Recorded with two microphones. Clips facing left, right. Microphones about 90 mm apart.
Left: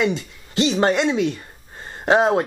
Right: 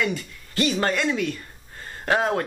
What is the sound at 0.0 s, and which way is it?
Speech, 20° left (ahead or behind).